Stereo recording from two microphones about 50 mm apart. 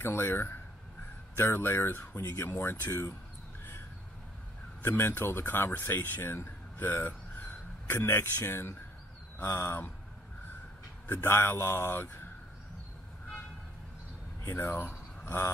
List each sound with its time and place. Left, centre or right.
0.0 s speech: left
1.9 s speech: left
4.8 s speech: left
7.9 s speech: left
11.2 s speech: left
14.5 s speech: left